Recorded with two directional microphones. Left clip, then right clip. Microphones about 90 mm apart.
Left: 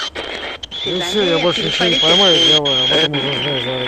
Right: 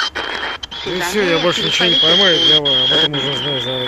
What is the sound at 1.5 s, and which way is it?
Speech, 45° left (ahead or behind).